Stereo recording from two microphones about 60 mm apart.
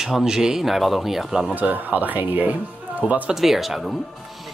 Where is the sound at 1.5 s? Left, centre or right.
Right.